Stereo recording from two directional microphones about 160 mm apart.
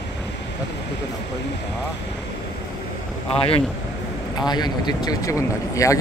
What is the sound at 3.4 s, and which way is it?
Speech, 35° left (ahead or behind).